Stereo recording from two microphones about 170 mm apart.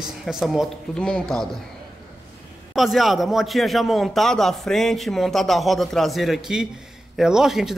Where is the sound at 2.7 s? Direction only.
Centre (ahead or behind).